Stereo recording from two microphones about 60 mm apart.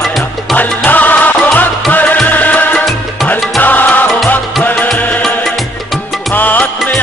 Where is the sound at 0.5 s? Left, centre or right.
Left.